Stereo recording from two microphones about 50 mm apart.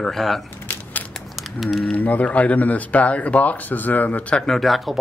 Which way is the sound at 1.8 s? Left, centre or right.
Left.